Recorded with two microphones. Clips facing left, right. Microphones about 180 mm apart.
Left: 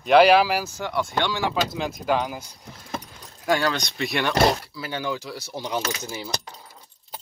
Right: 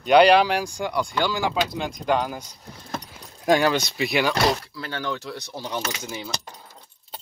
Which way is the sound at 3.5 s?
15° right (ahead or behind).